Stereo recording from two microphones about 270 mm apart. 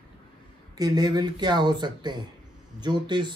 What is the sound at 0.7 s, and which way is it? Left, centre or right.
Speech, centre.